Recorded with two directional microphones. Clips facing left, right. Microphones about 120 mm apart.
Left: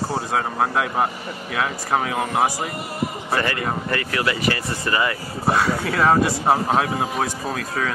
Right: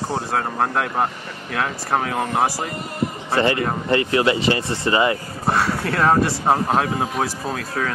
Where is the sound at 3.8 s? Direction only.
25° right (ahead or behind).